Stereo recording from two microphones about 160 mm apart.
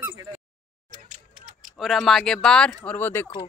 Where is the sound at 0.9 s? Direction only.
50° right (ahead or behind).